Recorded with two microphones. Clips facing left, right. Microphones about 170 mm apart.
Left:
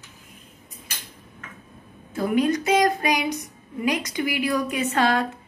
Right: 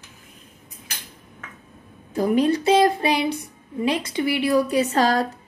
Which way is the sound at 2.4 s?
30° right (ahead or behind).